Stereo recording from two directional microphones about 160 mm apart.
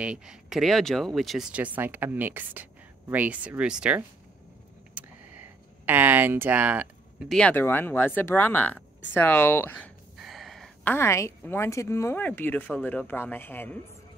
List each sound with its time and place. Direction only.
0.0 s speech: 5° right (ahead or behind)
4.9 s a sound: 10° right (ahead or behind)
7.2 s speech: 5° left (ahead or behind)
10.1 s a woman's voice: centre (ahead or behind)